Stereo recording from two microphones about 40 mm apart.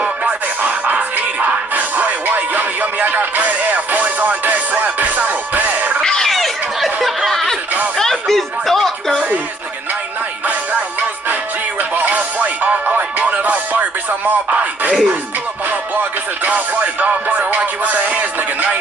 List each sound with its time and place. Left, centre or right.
0.6 s music: right
6.2 s a sound: centre
11.9 s music: right
16.0 s music: right